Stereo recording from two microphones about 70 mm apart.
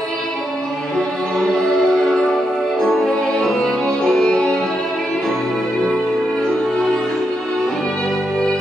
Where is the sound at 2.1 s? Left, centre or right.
Centre.